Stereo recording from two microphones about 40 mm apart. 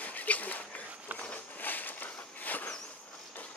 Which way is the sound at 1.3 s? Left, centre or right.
Left.